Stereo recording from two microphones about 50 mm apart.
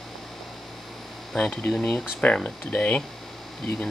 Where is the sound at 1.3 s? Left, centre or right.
Centre.